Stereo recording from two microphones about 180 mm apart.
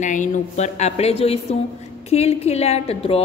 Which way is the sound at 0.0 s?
45° left (ahead or behind).